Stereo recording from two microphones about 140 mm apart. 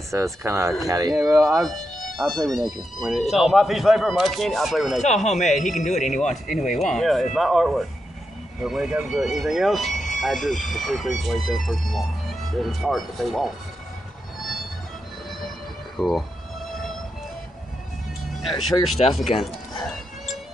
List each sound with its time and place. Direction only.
0.1 s speech: 20° right (ahead or behind)
1.1 s speech: centre (ahead or behind)
5.0 s speech: 55° left (ahead or behind)
6.8 s speech: centre (ahead or behind)
9.9 s fire alarm: 60° left (ahead or behind)
10.2 s speech: centre (ahead or behind)
16.0 s music: centre (ahead or behind)
18.2 s speech: centre (ahead or behind)